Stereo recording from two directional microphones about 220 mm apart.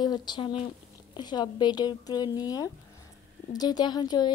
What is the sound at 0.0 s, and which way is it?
A woman's voice, 20° left (ahead or behind).